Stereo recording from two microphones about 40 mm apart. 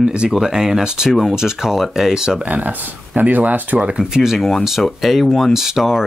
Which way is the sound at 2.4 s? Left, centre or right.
Right.